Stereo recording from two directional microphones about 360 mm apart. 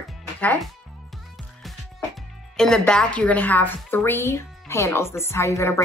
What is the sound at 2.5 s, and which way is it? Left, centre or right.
A woman's voice, centre.